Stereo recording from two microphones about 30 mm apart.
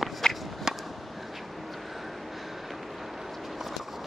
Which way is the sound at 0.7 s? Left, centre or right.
Centre.